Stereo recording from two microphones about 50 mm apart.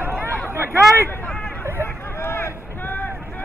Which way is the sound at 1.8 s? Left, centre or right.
Left.